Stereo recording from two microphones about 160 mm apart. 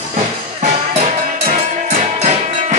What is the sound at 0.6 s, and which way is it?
Music, 40° right (ahead or behind).